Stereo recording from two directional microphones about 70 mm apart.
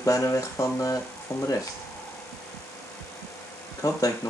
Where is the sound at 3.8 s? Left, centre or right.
Left.